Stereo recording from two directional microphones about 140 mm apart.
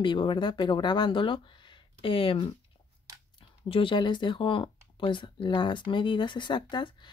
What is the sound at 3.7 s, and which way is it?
Speech, 35° left (ahead or behind).